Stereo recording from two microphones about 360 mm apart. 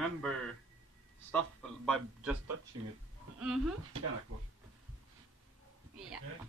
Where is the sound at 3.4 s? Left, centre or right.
Centre.